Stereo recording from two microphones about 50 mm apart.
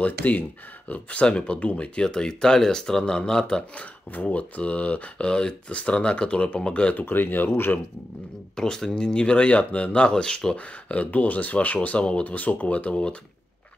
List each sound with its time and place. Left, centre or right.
0.0 s speech: left
2.0 s speech: centre
3.7 s speech: left
7.0 s speech: left
8.5 s speech: centre